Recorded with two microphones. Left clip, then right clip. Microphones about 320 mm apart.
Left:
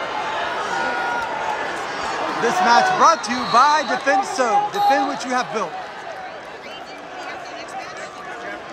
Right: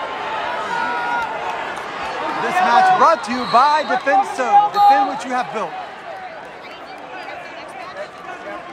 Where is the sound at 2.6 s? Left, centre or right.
Centre.